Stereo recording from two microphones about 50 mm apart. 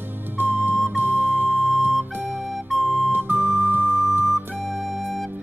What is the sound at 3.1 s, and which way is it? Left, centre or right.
Music, right.